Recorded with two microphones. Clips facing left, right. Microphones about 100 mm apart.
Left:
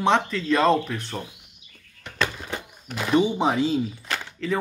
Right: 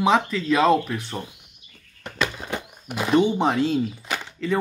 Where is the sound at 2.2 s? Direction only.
15° right (ahead or behind).